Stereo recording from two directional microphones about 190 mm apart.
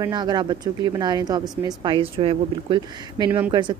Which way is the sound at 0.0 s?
20° right (ahead or behind).